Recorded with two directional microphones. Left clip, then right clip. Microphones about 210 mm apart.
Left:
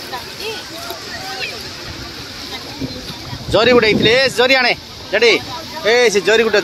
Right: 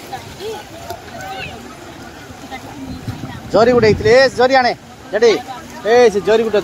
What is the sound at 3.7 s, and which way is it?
Speech, 10° right (ahead or behind).